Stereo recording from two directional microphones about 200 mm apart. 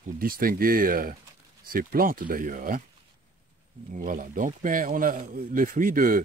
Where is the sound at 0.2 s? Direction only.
45° right (ahead or behind).